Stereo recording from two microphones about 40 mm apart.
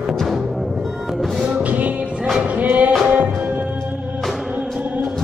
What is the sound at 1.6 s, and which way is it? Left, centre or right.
Music, right.